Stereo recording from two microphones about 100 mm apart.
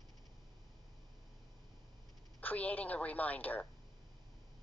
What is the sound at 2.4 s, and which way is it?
Speech, 15° left (ahead or behind).